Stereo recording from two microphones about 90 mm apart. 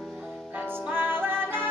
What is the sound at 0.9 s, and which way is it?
Music, 25° right (ahead or behind).